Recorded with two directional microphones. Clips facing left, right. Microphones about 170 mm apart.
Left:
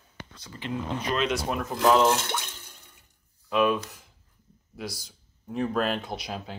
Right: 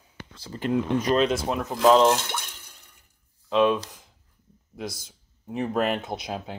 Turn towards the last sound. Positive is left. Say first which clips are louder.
# right 3 dB
turn(degrees=-20)  # may be behind; listen again after turning